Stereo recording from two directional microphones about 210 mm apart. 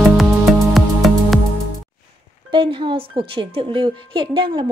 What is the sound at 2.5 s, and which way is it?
Speech, 25° right (ahead or behind).